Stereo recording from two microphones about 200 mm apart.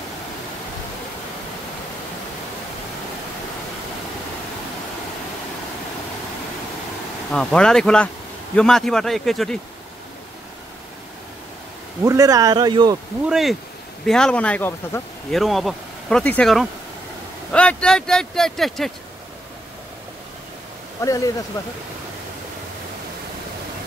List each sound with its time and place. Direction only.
7.2 s speech: 5° left (ahead or behind)
12.0 s speech: 15° right (ahead or behind)
13.3 s speech: centre (ahead or behind)
21.0 s speech: 15° left (ahead or behind)